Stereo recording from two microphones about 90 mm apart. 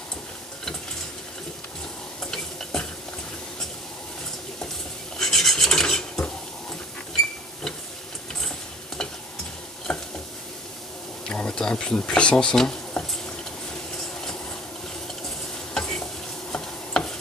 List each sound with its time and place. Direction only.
2.3 s stir: 10° left (ahead or behind)
5.2 s filing: 5° left (ahead or behind)
8.4 s mechanisms: 5° left (ahead or behind)
9.9 s stir: 10° left (ahead or behind)
11.2 s speech: 10° left (ahead or behind)
15.7 s stir: 5° left (ahead or behind)